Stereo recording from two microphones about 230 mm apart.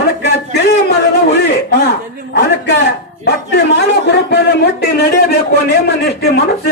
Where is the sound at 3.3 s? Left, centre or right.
Left.